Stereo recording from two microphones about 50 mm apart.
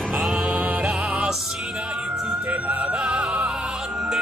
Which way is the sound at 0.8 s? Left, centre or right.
Centre.